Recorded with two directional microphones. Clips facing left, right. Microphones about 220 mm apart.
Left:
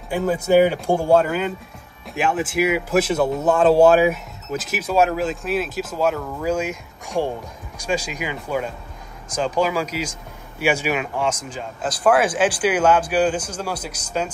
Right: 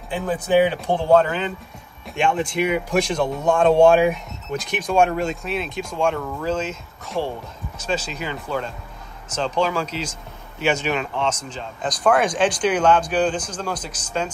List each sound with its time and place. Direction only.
0.5 s speech: 10° left (ahead or behind)